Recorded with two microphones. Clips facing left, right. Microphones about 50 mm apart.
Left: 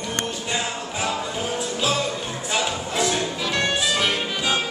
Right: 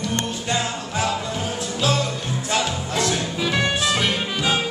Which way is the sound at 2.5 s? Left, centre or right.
Centre.